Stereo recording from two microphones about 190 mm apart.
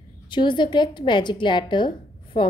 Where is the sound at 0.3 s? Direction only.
25° left (ahead or behind).